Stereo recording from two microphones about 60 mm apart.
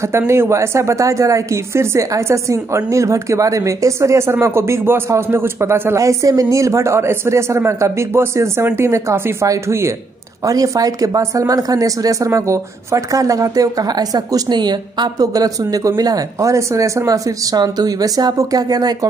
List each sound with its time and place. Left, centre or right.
0.3 s a woman's voice: right
10.4 s speech: right